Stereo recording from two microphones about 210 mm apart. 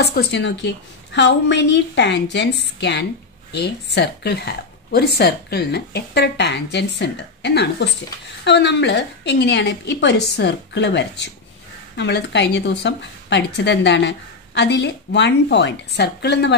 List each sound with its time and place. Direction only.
0.0 s a woman's voice: 50° left (ahead or behind)